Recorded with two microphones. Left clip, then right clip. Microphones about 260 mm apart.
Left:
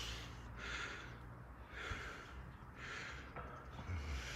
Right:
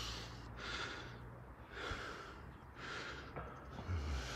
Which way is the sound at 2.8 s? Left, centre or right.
Centre.